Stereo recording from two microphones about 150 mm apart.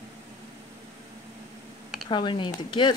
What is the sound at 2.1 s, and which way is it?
Speech, 30° left (ahead or behind).